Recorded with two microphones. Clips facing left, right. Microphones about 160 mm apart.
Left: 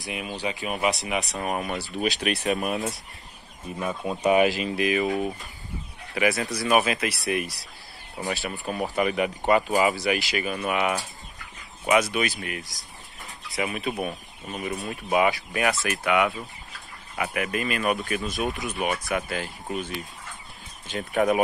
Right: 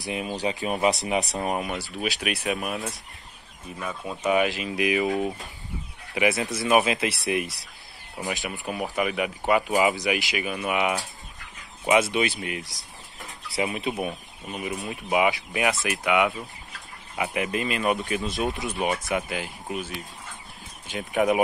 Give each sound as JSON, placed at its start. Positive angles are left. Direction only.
{"t": 0.1, "sound": "speech", "side_deg": -30}
{"t": 1.4, "sound": "speech", "side_deg": -20}
{"t": 1.9, "sound": "speech", "side_deg": 0}
{"t": 3.7, "sound": "speech", "side_deg": 20}
{"t": 4.2, "sound": "speech", "side_deg": 35}
{"t": 4.5, "sound": "speech", "side_deg": 0}
{"t": 4.7, "sound": "speech", "side_deg": -15}
{"t": 6.1, "sound": "speech", "side_deg": -20}
{"t": 9.7, "sound": "speech", "side_deg": -20}
{"t": 12.6, "sound": "a sound", "side_deg": 0}
{"t": 13.6, "sound": "speech", "side_deg": -25}
{"t": 19.7, "sound": "speech", "side_deg": -5}
{"t": 20.8, "sound": "speech", "side_deg": -15}